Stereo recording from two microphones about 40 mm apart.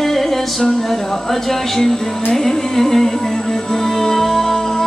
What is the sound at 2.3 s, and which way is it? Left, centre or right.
Music, centre.